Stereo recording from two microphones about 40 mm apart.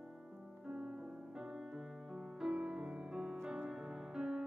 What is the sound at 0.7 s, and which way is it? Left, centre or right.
Music, centre.